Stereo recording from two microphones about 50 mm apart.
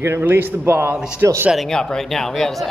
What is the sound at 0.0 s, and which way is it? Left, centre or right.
A man's voice, right.